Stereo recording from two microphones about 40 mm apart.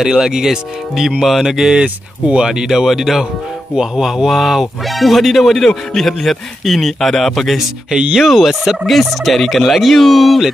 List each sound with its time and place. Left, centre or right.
0.0 s speech: centre
1.8 s speech: right
2.6 s speech: centre
8.3 s speech: centre